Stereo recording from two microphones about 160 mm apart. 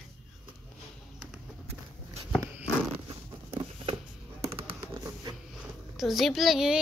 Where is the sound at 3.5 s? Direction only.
40° right (ahead or behind).